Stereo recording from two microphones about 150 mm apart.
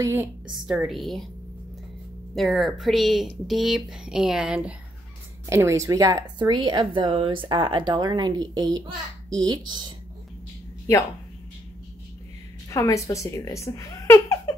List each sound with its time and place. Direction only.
0.0 s a woman's voice: 15° right (ahead or behind)
0.7 s speech: centre (ahead or behind)
2.3 s speech: centre (ahead or behind)
5.5 s speech: 20° right (ahead or behind)
12.6 s speech: 20° left (ahead or behind)